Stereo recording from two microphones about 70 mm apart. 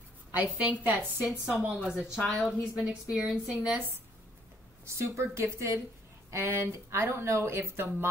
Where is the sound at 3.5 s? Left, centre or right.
Centre.